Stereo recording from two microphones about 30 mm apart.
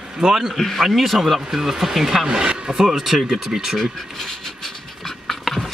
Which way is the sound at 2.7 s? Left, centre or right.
Centre.